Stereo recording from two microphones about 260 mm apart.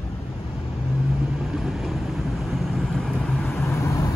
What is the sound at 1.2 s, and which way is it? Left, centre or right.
Vehicle, centre.